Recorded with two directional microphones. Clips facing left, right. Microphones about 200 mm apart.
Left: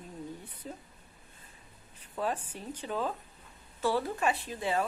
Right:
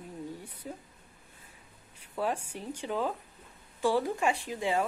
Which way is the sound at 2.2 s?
10° right (ahead or behind).